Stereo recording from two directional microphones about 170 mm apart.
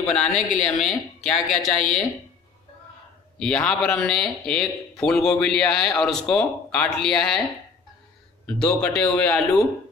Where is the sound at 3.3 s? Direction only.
5° left (ahead or behind).